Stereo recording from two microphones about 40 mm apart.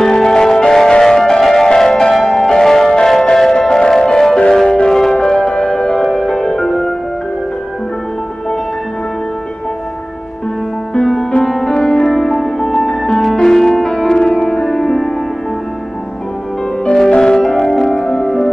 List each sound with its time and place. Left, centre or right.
0.0 s music: centre
11.6 s music: centre
17.1 s music: left
17.4 s music: centre